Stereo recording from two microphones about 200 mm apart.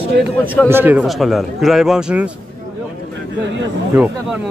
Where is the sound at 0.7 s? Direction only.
10° right (ahead or behind).